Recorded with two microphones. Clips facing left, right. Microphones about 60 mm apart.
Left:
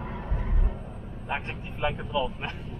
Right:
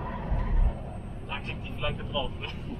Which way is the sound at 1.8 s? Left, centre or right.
Left.